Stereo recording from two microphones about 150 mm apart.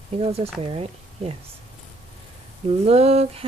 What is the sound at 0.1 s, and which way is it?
Speech, 40° right (ahead or behind).